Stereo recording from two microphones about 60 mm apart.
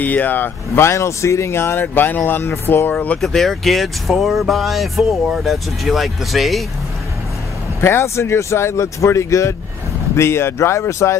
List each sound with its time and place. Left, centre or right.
0.0 s speech: left
0.7 s speech: left
2.9 s speech: left
3.2 s speech: centre
7.8 s speech: left